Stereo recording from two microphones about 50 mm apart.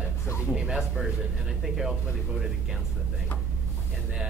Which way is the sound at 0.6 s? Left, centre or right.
Centre.